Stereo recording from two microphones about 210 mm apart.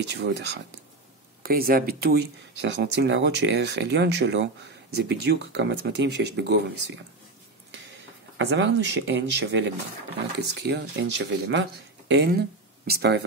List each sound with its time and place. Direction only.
0.0 s speech: 55° right (ahead or behind)
1.4 s speech: 45° right (ahead or behind)
8.5 s speech: 55° right (ahead or behind)